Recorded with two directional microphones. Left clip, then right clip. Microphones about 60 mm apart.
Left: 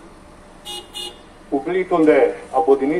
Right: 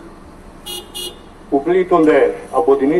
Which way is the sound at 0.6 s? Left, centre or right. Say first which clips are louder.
Right 3 dB; right.